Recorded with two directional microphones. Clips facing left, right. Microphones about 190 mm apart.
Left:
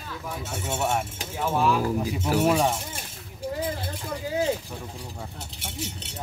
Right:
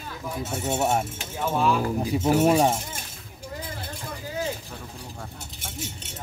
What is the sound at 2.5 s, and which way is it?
Speech, 40° right (ahead or behind).